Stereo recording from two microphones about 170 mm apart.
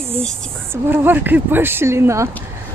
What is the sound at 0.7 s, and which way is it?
Speech, 10° right (ahead or behind).